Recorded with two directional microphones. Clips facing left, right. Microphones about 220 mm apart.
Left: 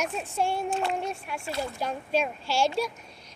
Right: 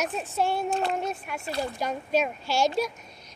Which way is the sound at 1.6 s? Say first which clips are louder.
Right 3 dB; 10° right (ahead or behind).